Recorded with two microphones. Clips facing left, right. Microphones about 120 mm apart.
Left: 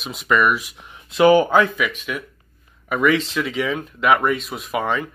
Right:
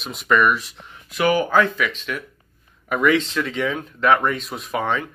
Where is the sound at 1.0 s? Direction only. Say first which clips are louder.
Left 6 dB; 25° left (ahead or behind).